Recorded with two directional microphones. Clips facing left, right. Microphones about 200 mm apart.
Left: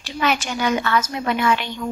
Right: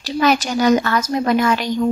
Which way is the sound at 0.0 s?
40° right (ahead or behind).